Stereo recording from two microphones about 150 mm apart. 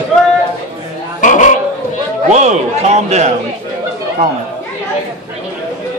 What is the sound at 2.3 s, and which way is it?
A man's voice, 50° right (ahead or behind).